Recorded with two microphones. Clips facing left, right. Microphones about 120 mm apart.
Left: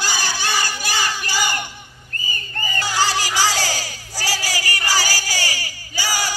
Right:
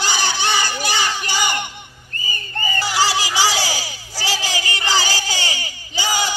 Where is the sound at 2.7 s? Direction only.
10° right (ahead or behind).